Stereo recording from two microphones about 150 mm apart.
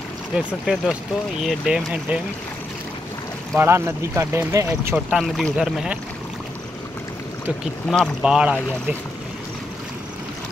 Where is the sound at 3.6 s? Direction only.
15° right (ahead or behind).